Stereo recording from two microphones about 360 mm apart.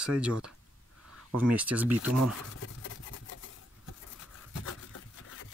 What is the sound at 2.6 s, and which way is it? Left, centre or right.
Rub, left.